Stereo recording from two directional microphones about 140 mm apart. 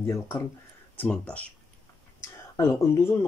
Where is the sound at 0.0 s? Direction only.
20° left (ahead or behind).